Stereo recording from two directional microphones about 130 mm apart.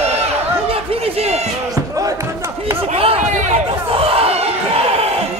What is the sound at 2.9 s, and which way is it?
Chatter, 50° right (ahead or behind).